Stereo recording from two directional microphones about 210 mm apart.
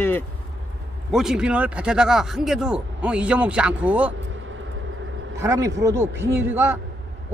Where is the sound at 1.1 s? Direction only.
5° right (ahead or behind).